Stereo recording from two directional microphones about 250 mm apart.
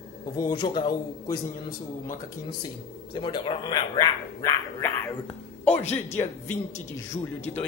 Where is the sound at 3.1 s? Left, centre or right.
Centre.